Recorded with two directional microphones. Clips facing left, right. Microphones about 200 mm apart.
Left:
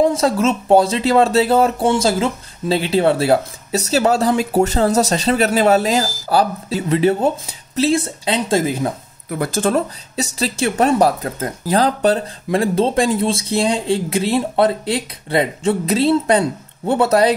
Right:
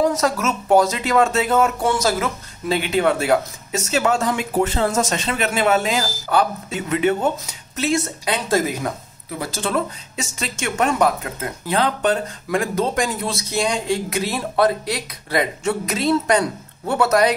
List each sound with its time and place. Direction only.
0.0 s speech: 30° left (ahead or behind)
9.4 s speech: 50° left (ahead or behind); by 17.3 s 30° left (ahead or behind)